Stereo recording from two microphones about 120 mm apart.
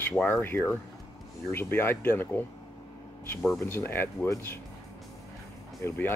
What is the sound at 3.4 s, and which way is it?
Speech, 20° left (ahead or behind).